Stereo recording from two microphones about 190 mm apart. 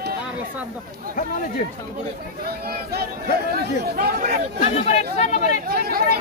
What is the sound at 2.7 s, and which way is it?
Speech, 55° right (ahead or behind).